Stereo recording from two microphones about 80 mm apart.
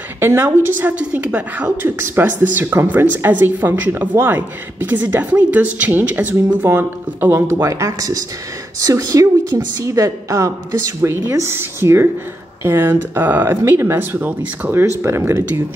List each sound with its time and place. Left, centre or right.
0.2 s a woman's voice: right